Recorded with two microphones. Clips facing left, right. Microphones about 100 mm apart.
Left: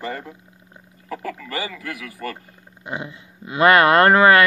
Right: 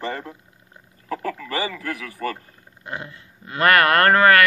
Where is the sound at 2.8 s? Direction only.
20° left (ahead or behind).